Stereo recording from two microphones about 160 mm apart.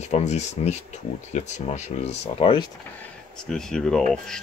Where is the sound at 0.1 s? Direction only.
45° left (ahead or behind).